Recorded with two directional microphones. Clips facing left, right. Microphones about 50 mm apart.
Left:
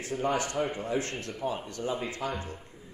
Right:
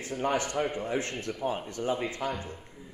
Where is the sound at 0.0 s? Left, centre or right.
Right.